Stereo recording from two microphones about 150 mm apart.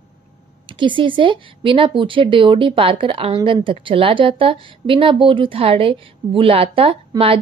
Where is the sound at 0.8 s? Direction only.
35° right (ahead or behind).